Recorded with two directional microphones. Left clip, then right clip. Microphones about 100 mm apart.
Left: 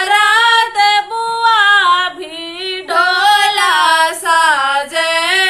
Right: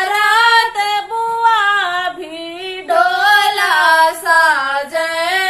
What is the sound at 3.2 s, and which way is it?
Singing, 35° left (ahead or behind).